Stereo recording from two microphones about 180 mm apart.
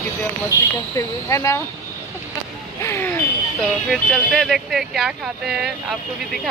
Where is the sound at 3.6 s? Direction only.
Centre (ahead or behind).